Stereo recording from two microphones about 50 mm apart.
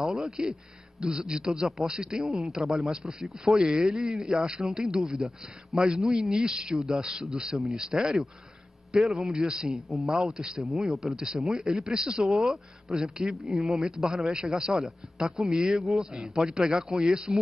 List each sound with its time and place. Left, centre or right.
0.0 s a man's voice: centre
10.6 s a man's voice: centre